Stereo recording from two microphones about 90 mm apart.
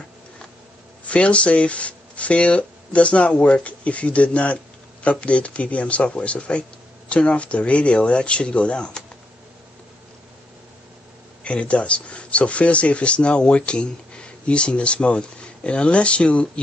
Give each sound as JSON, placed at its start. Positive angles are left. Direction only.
{"t": 1.0, "sound": "speech", "side_deg": 15}
{"t": 11.4, "sound": "speech", "side_deg": 15}